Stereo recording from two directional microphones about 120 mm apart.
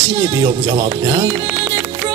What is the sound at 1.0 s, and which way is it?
Music, 25° right (ahead or behind).